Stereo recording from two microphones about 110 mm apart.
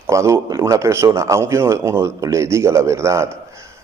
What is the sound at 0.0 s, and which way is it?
Speech, 25° right (ahead or behind).